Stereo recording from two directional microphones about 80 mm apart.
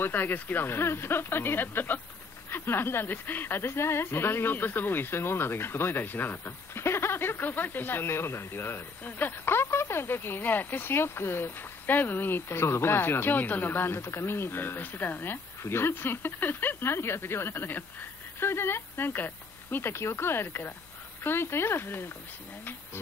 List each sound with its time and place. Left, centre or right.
0.0 s speech: left